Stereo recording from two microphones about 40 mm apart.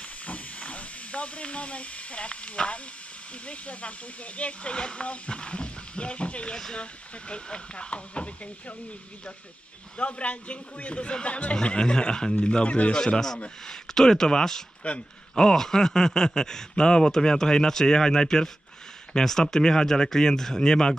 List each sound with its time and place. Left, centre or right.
0.3 s hiss: left
3.4 s a man's voice: left
6.5 s speech: centre
6.8 s speech: left
9.9 s a man's voice: left
11.6 s speech: left
12.4 s a man's voice: left
12.9 s speech: centre
14.8 s a man's voice: left
15.3 s speech: centre